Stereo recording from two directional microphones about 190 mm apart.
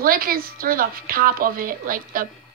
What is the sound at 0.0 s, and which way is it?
A woman's voice, 50° right (ahead or behind).